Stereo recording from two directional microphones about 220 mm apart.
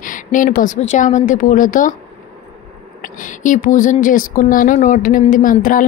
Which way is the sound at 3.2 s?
35° left (ahead or behind).